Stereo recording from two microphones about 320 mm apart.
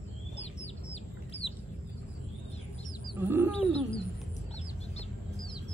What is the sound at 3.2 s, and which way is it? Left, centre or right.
Wild animals, centre.